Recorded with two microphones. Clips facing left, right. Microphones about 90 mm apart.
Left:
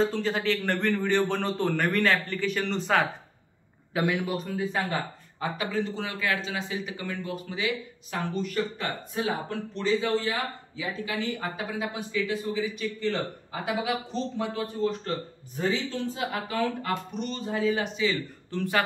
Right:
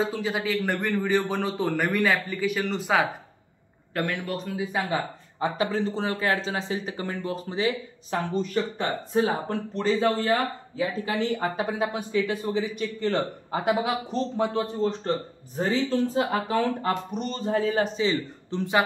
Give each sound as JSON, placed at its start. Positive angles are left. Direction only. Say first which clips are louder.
{"t": 0.0, "sound": "a man's voice", "louder": "left 1 dB", "side_deg": -5}
{"t": 3.9, "sound": "a man's voice", "louder": "left 2 dB", "side_deg": 5}
{"t": 4.7, "sound": "speech", "louder": "right 2 dB", "side_deg": -20}
{"t": 5.7, "sound": "speech", "louder": "right 3 dB", "side_deg": -35}
{"t": 14.9, "sound": "speech", "louder": "right 3 dB", "side_deg": -35}
{"t": 18.5, "sound": "speech", "louder": "right 3 dB", "side_deg": -20}